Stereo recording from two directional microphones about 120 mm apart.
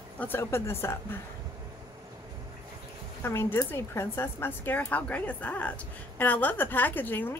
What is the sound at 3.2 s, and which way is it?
A woman's voice, 20° left (ahead or behind).